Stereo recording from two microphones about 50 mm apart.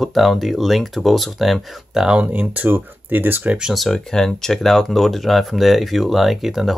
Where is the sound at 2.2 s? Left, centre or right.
Right.